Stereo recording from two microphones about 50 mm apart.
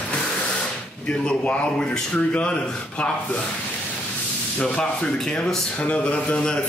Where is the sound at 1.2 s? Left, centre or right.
Left.